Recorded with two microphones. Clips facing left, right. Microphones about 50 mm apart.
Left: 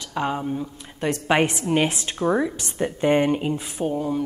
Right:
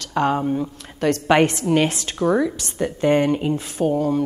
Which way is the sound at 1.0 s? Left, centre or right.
Centre.